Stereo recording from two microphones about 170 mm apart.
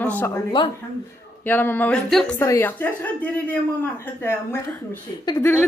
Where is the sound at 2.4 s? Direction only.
15° left (ahead or behind).